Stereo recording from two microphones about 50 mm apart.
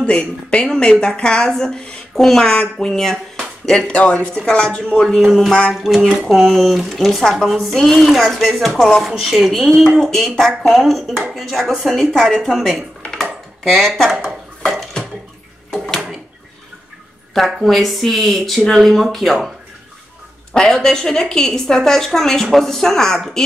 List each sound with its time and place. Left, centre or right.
0.0 s a woman's voice: left
2.5 s speech: left
2.9 s a woman's voice: centre
3.9 s a woman's voice: left
4.9 s speech: centre
13.1 s a sound: centre
15.7 s a sound: centre
17.3 s speech: centre
20.5 s a woman's voice: centre